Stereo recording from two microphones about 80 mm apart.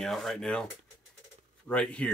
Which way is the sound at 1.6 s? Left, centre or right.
Centre.